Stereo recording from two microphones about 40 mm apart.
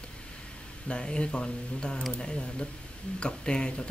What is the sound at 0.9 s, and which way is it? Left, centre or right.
Speech, left.